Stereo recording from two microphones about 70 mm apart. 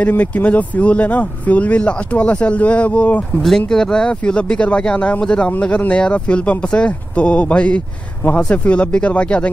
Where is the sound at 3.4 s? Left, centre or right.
Centre.